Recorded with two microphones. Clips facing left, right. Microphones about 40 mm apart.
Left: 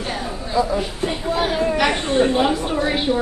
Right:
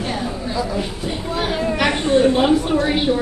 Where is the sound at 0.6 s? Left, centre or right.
Centre.